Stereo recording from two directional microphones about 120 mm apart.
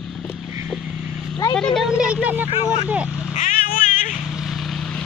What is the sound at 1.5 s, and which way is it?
Speech, 5° left (ahead or behind).